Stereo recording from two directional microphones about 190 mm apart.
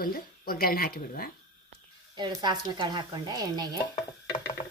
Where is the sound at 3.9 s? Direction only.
25° left (ahead or behind).